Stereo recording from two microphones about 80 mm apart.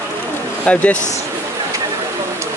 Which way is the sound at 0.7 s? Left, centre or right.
Centre.